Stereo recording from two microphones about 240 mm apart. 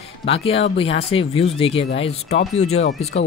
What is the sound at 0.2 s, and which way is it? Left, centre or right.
Speech, left.